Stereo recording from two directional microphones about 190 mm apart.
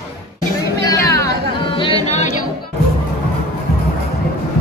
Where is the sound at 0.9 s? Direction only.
15° left (ahead or behind); by 2.3 s 30° left (ahead or behind).